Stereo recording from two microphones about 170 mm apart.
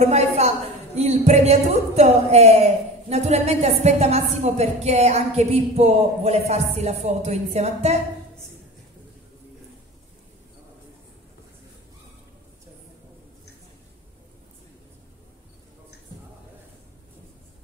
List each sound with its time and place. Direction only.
0.0 s a woman's voice: 40° right (ahead or behind)